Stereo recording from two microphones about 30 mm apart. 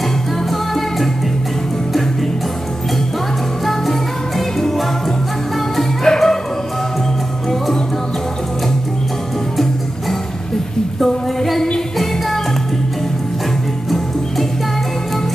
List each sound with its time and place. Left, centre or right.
0.5 s music: centre
4.6 s music: centre
6.0 s music: centre